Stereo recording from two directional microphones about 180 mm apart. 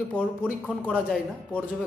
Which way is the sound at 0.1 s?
5° left (ahead or behind).